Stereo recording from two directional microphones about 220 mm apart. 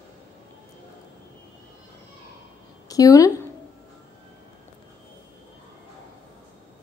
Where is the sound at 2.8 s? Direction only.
15° left (ahead or behind).